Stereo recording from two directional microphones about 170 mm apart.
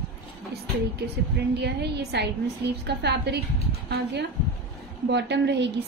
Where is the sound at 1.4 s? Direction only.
75° right (ahead or behind).